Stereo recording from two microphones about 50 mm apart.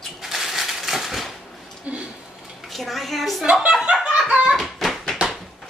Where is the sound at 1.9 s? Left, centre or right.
Right.